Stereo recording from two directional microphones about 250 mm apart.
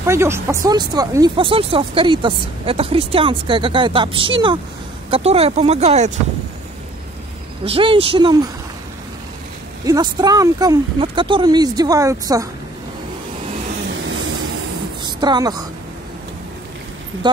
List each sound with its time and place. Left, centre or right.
0.0 s speech: centre; by 6.1 s right
7.6 s speech: right
9.8 s speech: centre
14.0 s vehicle: right
15.0 s a sound: centre